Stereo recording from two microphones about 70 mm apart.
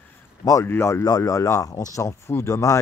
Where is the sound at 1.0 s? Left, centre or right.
Left.